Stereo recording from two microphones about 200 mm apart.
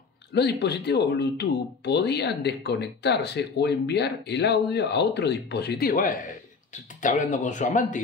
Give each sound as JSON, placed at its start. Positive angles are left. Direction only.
{"t": 0.3, "sound": "speech", "side_deg": 55}